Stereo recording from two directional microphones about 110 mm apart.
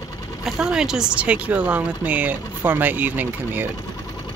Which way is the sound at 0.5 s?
5° right (ahead or behind).